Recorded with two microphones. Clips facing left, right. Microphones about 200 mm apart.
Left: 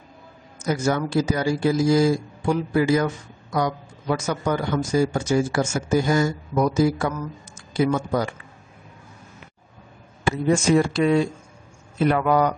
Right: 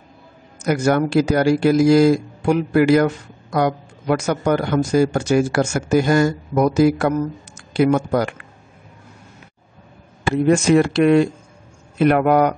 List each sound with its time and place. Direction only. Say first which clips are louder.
0.7 s speech: right 5 dB; 65° right (ahead or behind)
10.3 s speech: right 5 dB; 65° right (ahead or behind)